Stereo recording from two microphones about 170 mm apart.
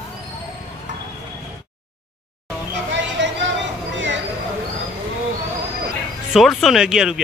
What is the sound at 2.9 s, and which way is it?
Music, 90° right.